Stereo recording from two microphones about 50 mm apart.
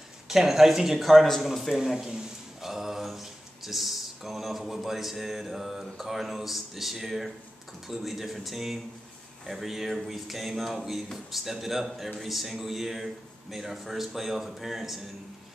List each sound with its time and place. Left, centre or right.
0.3 s a man's voice: centre